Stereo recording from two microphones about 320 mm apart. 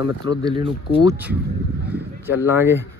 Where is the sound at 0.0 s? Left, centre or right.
Centre.